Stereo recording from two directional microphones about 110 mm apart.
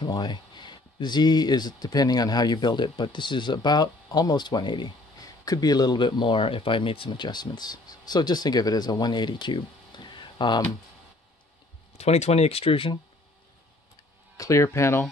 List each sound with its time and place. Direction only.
0.0 s speech: 40° left (ahead or behind)
12.0 s speech: 75° left (ahead or behind); by 12.9 s 55° left (ahead or behind)
14.3 s speech: 30° left (ahead or behind)